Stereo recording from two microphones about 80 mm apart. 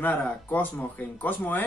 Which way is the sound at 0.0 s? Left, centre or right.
Left.